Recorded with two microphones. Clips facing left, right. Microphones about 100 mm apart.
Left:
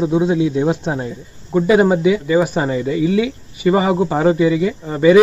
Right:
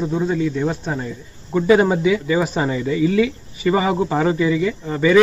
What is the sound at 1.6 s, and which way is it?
Speech, 5° left (ahead or behind).